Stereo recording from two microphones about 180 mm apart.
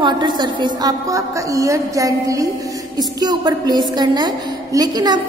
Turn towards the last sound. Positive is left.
turn(degrees=-20)  # may be behind; listen again after turning